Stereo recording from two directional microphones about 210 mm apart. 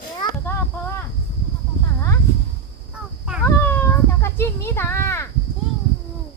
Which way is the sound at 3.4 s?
10° left (ahead or behind).